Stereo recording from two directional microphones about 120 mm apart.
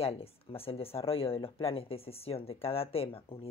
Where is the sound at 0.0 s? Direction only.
55° left (ahead or behind).